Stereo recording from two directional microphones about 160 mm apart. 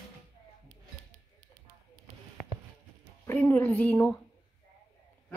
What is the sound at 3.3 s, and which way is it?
Speech, 15° left (ahead or behind).